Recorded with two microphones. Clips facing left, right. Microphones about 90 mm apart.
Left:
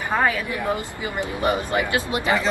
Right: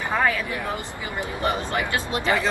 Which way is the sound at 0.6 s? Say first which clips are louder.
Left 4 dB; 20° left (ahead or behind).